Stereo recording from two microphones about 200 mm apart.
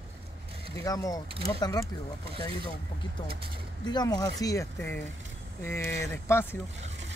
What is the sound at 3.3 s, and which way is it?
Speech, 25° right (ahead or behind).